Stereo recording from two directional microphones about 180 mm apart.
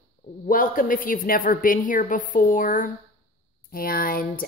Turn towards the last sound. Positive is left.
turn(degrees=55)  # may be behind; listen again after turning